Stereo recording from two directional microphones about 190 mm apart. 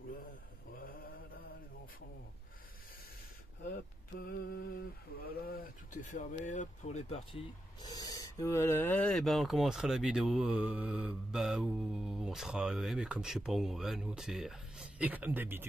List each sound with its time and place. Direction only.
0.7 s mantra: 50° left (ahead or behind)
4.3 s speech: 55° left (ahead or behind); by 7.4 s 35° left (ahead or behind)
7.8 s speech: 20° left (ahead or behind); by 15.6 s 10° right (ahead or behind)